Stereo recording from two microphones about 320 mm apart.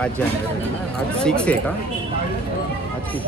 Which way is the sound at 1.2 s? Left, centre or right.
Centre.